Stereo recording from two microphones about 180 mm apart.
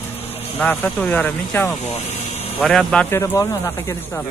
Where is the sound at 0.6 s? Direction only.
10° left (ahead or behind).